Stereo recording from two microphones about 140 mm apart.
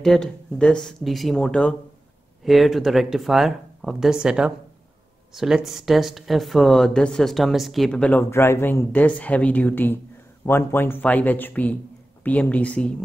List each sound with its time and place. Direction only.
0.0 s speech: 5° left (ahead or behind)